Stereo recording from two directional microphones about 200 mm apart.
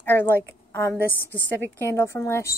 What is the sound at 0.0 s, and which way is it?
A woman's voice, 10° left (ahead or behind).